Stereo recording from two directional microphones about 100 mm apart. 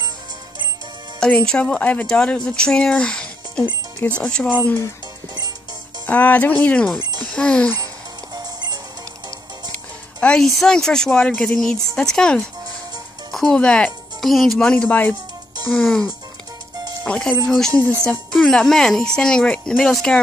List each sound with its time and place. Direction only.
1.2 s speech: 10° left (ahead or behind)
6.0 s speech: 15° left (ahead or behind)
7.0 s music: 45° right (ahead or behind)
7.2 s speech: 10° left (ahead or behind)
7.8 s music: 40° right (ahead or behind)
10.2 s speech: 5° left (ahead or behind)